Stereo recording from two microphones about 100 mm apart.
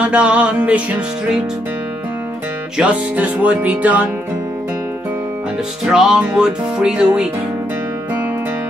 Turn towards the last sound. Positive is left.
turn(degrees=-10)  # may be behind; listen again after turning